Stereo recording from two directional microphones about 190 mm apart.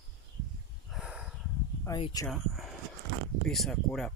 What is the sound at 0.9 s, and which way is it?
Snort, 5° right (ahead or behind).